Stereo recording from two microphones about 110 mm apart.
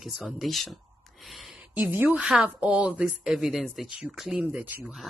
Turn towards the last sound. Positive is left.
turn(degrees=-15)  # may be behind; listen again after turning